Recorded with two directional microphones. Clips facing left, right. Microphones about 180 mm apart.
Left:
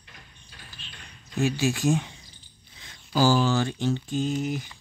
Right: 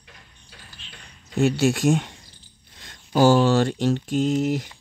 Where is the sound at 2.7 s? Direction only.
60° right (ahead or behind); by 4.7 s 85° right.